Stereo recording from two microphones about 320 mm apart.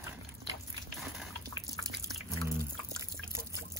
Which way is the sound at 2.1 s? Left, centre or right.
Centre.